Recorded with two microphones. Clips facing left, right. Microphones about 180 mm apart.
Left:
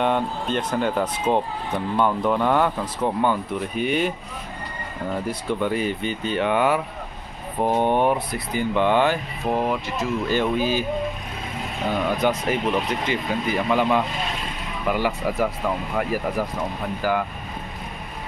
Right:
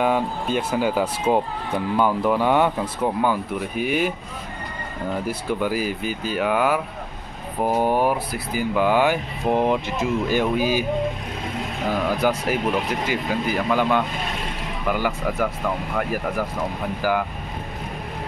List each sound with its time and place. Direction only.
0.0 s speech: 5° right (ahead or behind)
5.2 s speech: 5° right (ahead or behind)
11.9 s speech: 5° right (ahead or behind)